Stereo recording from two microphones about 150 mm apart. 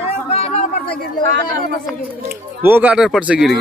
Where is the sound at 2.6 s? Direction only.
10° right (ahead or behind).